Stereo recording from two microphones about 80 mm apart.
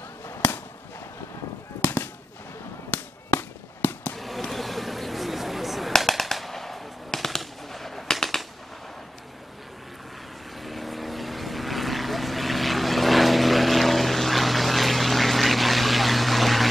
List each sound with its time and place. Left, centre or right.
3.3 s fireworks: left
4.2 s a sound: centre
10.6 s vehicle: centre